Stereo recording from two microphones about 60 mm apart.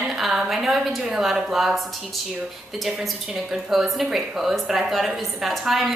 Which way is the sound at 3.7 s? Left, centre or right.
Centre.